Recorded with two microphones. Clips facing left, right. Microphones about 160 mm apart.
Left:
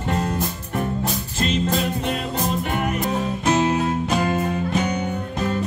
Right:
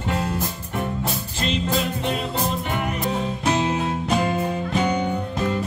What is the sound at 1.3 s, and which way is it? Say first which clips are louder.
Music: left 3 dB; 45° left (ahead or behind).